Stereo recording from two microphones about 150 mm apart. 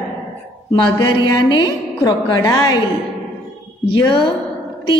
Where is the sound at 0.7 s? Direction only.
25° left (ahead or behind).